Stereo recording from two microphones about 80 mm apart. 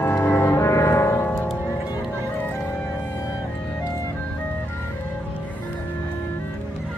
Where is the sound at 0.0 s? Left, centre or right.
Left.